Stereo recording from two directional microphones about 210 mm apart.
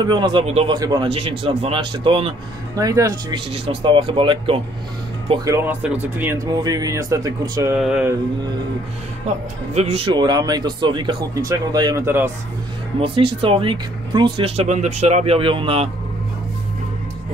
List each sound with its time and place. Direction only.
0.0 s speech: 20° right (ahead or behind)
7.7 s mantra: 5° right (ahead or behind)
9.8 s speech: 25° right (ahead or behind)
13.0 s speech: 25° right (ahead or behind)